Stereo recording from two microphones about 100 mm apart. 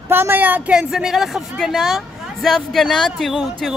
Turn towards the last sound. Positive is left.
turn(degrees=0)  # may be behind; listen again after turning